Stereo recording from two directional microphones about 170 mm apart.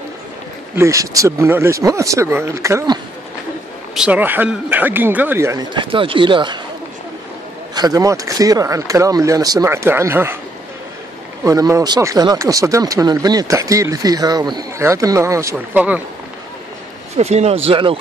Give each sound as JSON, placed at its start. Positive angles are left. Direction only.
{"t": 0.7, "sound": "speech", "side_deg": -20}
{"t": 3.9, "sound": "speech", "side_deg": -5}
{"t": 7.7, "sound": "speech", "side_deg": -20}
{"t": 11.4, "sound": "speech", "side_deg": -20}
{"t": 17.2, "sound": "speech", "side_deg": -40}